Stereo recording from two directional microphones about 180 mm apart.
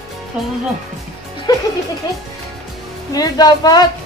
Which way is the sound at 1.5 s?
20° left (ahead or behind).